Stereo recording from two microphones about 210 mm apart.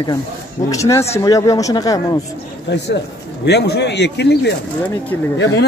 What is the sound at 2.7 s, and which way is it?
Speech, 55° left (ahead or behind).